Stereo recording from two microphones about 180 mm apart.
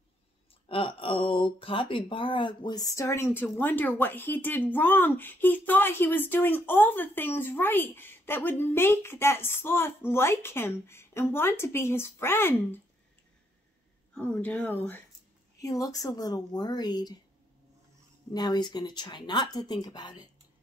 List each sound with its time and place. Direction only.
0.7 s speech: 30° left (ahead or behind); by 12.8 s 15° left (ahead or behind)
14.1 s speech: 5° left (ahead or behind)
15.6 s speech: 20° left (ahead or behind)
18.3 s speech: 25° left (ahead or behind)